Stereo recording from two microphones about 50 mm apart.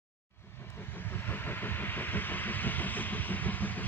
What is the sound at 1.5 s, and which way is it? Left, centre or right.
Vehicle, left.